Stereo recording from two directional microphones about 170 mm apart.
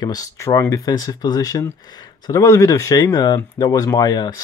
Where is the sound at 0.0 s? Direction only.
20° left (ahead or behind).